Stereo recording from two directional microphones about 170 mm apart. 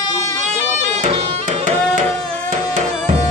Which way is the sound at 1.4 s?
50° right (ahead or behind).